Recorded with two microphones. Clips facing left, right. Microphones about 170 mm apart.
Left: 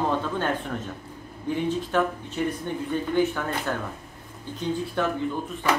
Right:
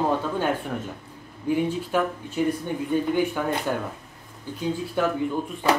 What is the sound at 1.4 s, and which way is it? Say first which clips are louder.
Speech: right 2 dB; 10° right (ahead or behind).